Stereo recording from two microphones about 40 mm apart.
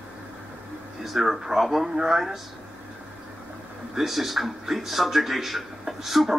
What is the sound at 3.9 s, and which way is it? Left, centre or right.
Speech, centre.